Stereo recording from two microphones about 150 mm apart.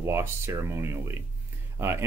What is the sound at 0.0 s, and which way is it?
Speech, 15° right (ahead or behind).